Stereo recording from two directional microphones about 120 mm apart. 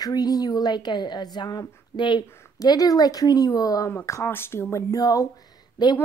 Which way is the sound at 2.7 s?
35° left (ahead or behind).